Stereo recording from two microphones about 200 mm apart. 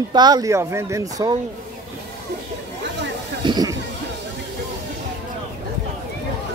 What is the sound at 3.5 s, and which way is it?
Chatter, 20° right (ahead or behind).